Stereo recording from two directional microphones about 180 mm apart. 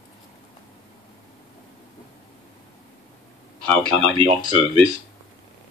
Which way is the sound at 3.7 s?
30° right (ahead or behind).